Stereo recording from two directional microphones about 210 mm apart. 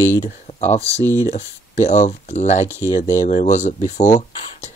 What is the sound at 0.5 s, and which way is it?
Speech, 30° left (ahead or behind).